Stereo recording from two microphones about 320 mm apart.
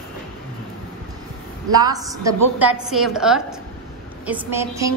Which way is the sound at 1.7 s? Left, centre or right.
Centre.